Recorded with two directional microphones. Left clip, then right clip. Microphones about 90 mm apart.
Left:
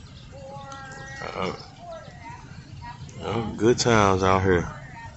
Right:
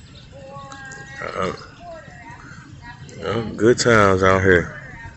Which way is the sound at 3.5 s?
15° right (ahead or behind).